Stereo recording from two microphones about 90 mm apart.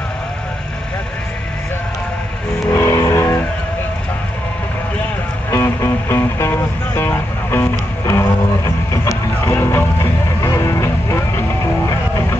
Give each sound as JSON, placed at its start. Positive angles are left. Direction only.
{"t": 2.7, "sound": "vehicle", "side_deg": 30}
{"t": 5.5, "sound": "music", "side_deg": 30}